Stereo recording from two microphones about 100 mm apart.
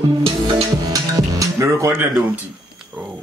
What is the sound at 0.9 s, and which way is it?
Music, 35° right (ahead or behind).